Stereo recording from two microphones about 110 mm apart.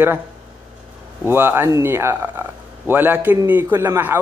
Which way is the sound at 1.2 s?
20° right (ahead or behind).